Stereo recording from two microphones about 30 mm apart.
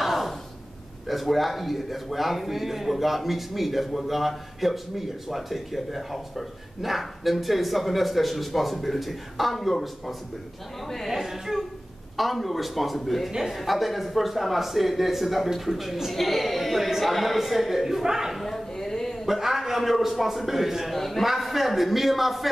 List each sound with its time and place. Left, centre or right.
0.0 s gasp: centre
1.0 s a man's voice: centre
11.1 s a woman's voice: centre
16.1 s a man's voice: centre
18.5 s a sound: centre
19.2 s a man's voice: centre
20.9 s a man's voice: centre